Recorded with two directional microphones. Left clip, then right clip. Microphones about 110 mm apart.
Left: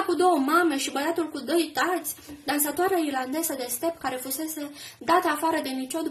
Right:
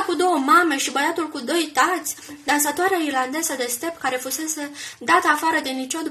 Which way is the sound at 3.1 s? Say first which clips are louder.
Right 6 dB; 30° left (ahead or behind).